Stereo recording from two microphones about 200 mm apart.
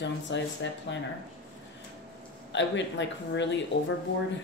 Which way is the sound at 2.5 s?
65° left (ahead or behind).